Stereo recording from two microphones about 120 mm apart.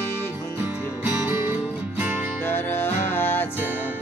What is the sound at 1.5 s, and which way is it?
Music, 15° right (ahead or behind).